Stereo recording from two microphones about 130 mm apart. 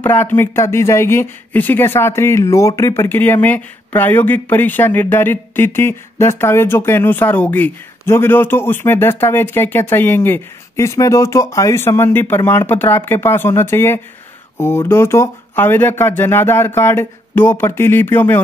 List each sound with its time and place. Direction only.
0.0 s speech: 15° left (ahead or behind)